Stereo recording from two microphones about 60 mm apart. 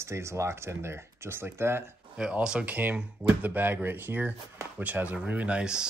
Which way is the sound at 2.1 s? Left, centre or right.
Centre.